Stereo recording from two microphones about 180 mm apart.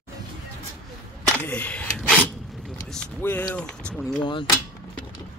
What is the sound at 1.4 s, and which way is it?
Speech, 10° left (ahead or behind).